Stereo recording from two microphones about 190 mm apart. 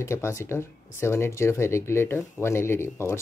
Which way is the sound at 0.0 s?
15° left (ahead or behind).